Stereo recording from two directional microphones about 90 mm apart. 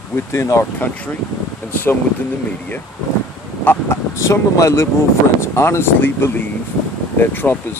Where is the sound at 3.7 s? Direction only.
30° left (ahead or behind).